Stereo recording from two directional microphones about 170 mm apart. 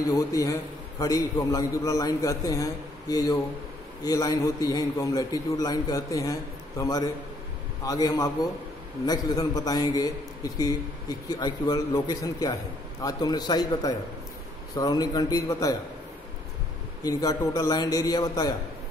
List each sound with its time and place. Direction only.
0.1 s a man's voice: 20° left (ahead or behind)
17.0 s a man's voice: 20° left (ahead or behind)